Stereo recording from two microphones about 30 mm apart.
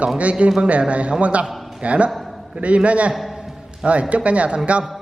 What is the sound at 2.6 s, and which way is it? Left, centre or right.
Mantra, right.